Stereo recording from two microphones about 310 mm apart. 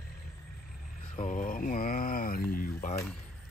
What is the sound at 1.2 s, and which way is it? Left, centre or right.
Speech, left.